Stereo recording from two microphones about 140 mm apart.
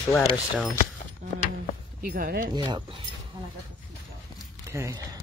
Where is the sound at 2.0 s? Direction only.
90° right.